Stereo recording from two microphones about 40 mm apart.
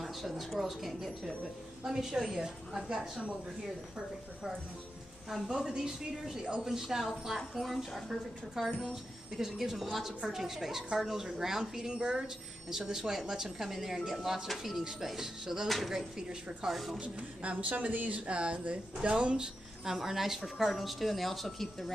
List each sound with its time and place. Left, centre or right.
0.0 s a woman's voice: centre
5.3 s speech: centre
6.4 s speech: right
6.7 s a woman's voice: centre
16.7 s a woman's voice: centre
17.0 s speech: right
19.8 s a woman's voice: centre